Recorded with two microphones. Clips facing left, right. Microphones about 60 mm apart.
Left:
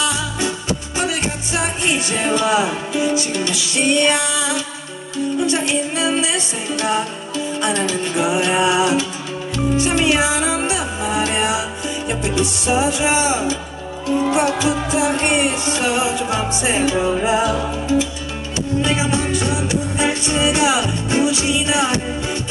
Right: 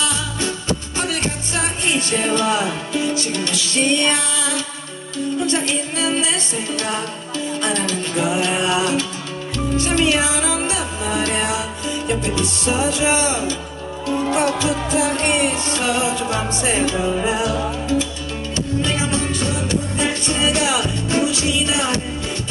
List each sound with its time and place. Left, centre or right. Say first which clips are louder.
0.0 s music: left 2 dB; centre